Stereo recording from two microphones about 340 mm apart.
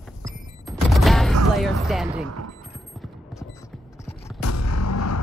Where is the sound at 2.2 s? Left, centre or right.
Right.